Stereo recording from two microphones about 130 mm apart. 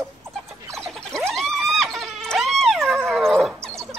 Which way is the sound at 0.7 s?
Centre (ahead or behind).